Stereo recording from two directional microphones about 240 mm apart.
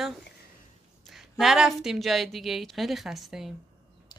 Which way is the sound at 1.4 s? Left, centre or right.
Centre.